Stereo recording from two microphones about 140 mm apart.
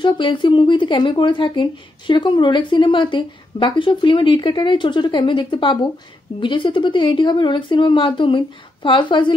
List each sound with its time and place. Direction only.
0.0 s a woman's voice: 35° left (ahead or behind)